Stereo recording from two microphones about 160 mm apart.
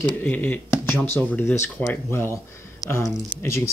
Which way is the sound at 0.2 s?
10° left (ahead or behind).